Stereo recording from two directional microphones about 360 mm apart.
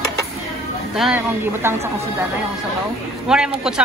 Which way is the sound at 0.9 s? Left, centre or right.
Centre.